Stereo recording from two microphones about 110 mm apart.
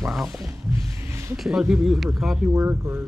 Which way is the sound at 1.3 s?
Centre (ahead or behind).